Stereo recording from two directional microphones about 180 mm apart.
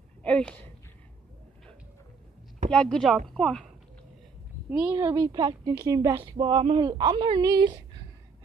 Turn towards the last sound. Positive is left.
turn(degrees=-25)  # may be behind; listen again after turning